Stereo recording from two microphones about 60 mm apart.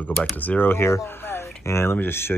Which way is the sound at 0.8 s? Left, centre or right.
Left.